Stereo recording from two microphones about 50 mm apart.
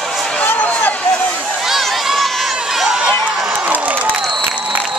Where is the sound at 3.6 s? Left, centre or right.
Right.